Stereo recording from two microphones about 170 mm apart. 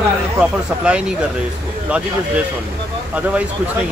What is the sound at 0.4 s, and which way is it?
Speech, 5° right (ahead or behind).